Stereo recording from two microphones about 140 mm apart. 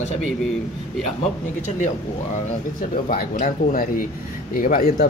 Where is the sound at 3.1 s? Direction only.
85° left.